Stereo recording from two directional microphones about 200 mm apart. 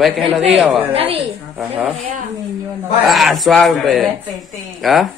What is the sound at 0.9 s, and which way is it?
Speech, 30° right (ahead or behind).